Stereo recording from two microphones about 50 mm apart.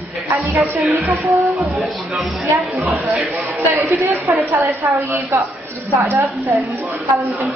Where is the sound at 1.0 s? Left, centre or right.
Right.